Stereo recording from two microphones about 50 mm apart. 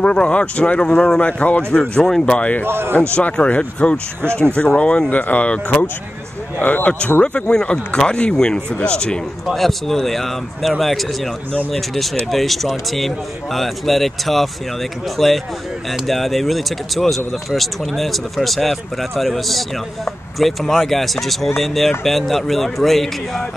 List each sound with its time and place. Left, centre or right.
0.0 s speech: centre
1.2 s speech: left
1.7 s speech: centre
2.3 s speech: left
2.6 s a man's voice: right
3.4 s speech: left
7.3 s speech: centre
9.5 s speech: centre